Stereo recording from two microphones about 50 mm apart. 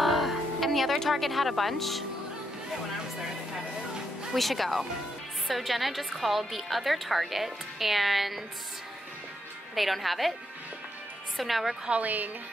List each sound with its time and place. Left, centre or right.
0.0 s speech: centre
4.3 s a woman's voice: centre
9.8 s a woman's voice: centre
11.3 s a woman's voice: centre
12.0 s a woman's voice: right